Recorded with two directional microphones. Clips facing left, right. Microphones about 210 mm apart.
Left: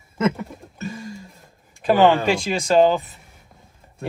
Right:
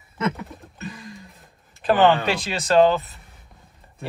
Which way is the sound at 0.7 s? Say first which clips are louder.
Left 5 dB; 25° left (ahead or behind).